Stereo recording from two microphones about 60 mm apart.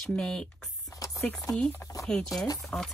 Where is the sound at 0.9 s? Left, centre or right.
Left.